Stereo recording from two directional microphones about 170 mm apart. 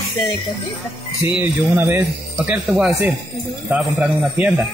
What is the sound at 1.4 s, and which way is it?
A man's voice, 15° right (ahead or behind).